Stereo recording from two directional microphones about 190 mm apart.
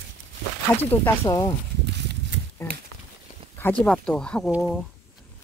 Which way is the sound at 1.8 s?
65° right (ahead or behind).